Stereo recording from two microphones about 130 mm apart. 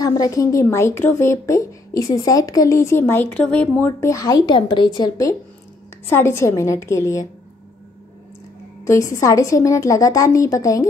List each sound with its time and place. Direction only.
0.0 s speech: 30° left (ahead or behind)
6.0 s speech: 20° left (ahead or behind)
8.8 s speech: 25° left (ahead or behind)